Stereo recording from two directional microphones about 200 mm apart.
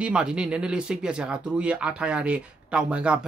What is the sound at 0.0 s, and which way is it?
Speech, 5° right (ahead or behind).